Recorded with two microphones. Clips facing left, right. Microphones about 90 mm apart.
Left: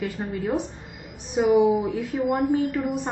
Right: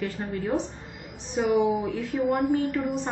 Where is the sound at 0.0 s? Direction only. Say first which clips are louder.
Left 2 dB; 10° left (ahead or behind).